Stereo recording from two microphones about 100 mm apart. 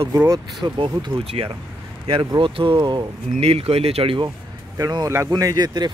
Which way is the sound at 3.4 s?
85° right.